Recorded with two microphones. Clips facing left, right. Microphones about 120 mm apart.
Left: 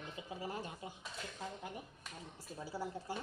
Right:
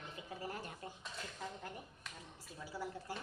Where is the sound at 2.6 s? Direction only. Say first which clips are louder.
Left 2 dB; 25° left (ahead or behind).